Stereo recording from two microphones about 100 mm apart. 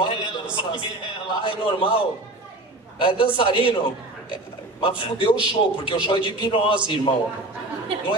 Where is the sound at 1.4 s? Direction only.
60° left (ahead or behind).